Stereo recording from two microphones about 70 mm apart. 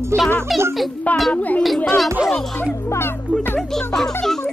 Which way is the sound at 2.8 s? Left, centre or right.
Left.